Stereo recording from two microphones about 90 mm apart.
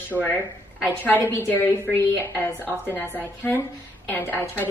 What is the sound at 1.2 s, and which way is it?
A woman's voice, 20° left (ahead or behind).